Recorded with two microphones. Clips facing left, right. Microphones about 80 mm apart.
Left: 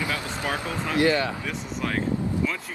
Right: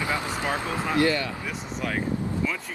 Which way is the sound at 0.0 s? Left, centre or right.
Right.